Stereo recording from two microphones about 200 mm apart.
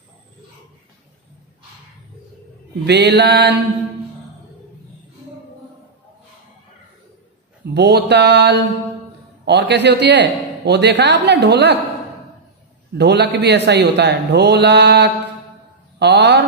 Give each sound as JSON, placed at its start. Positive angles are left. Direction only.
{"t": 2.9, "sound": "speech", "side_deg": -60}
{"t": 7.7, "sound": "speech", "side_deg": -55}
{"t": 12.9, "sound": "speech", "side_deg": -55}